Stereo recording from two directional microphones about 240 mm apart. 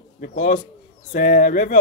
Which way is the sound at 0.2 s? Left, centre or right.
Left.